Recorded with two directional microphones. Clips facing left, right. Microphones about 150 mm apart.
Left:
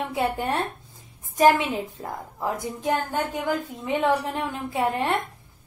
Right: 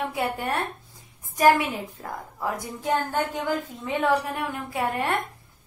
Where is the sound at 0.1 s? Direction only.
20° left (ahead or behind).